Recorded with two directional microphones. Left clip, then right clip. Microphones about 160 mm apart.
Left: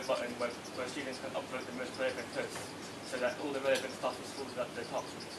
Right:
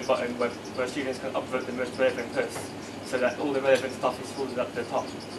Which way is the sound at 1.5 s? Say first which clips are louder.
Right 10 dB; 20° right (ahead or behind).